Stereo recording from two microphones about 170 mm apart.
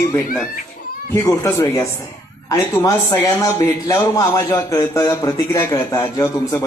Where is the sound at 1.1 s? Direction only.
15° left (ahead or behind).